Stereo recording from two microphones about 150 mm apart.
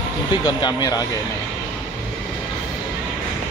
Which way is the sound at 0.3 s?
30° left (ahead or behind).